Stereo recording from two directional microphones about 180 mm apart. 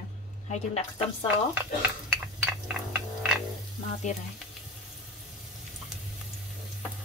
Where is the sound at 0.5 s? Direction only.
35° left (ahead or behind).